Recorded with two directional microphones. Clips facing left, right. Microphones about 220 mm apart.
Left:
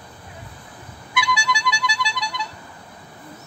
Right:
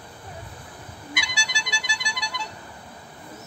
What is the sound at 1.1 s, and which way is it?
Music, 45° right (ahead or behind).